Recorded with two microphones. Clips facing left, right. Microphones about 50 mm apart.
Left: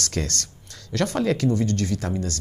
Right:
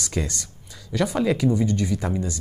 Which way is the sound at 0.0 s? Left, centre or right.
Centre.